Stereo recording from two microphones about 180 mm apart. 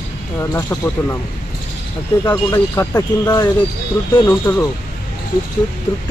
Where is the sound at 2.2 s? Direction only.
15° left (ahead or behind).